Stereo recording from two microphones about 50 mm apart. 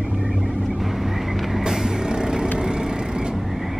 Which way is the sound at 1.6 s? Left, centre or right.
Centre.